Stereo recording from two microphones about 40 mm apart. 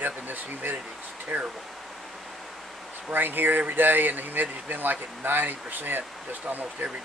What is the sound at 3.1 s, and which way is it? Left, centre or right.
Speech, right.